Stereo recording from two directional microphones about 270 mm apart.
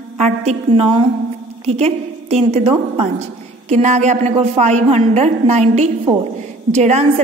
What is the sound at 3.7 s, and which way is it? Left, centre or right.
A woman's voice, right.